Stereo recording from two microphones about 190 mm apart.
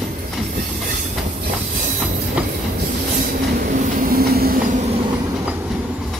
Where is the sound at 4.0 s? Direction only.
50° right (ahead or behind).